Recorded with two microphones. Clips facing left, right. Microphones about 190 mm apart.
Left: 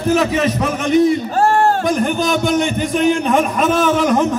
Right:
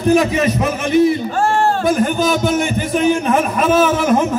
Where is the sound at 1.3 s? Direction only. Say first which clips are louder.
Left 2 dB; 40° left (ahead or behind).